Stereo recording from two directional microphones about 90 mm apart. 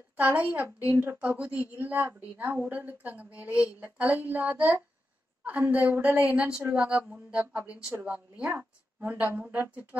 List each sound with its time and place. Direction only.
0.2 s a woman's voice: 20° right (ahead or behind)